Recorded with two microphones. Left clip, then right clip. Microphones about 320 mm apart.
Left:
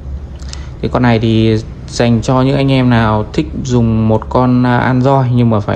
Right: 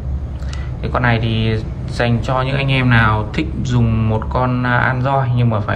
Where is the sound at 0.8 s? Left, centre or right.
Centre.